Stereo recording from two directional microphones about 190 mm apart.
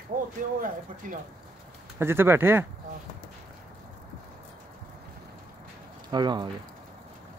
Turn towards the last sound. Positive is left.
turn(degrees=-25)  # may be behind; listen again after turning